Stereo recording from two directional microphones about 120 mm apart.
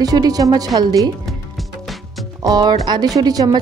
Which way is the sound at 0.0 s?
30° right (ahead or behind).